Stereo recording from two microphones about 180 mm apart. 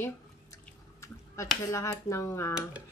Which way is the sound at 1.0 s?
15° left (ahead or behind).